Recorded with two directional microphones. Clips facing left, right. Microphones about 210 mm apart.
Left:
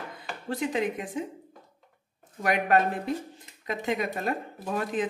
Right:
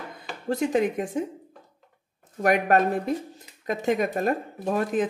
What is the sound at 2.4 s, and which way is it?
Speech, 45° right (ahead or behind).